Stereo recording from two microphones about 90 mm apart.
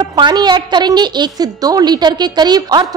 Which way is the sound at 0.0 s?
55° right (ahead or behind).